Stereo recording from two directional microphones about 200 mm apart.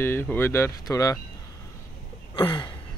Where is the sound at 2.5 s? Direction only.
25° left (ahead or behind).